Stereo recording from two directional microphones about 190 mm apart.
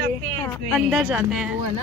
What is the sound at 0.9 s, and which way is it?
Speech, 5° right (ahead or behind).